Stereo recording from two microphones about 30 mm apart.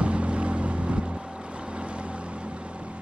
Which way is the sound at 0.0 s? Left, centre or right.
Right.